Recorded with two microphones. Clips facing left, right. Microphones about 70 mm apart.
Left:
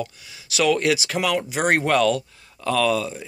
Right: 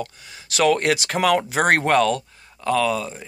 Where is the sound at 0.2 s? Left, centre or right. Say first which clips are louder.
Right 3 dB; right.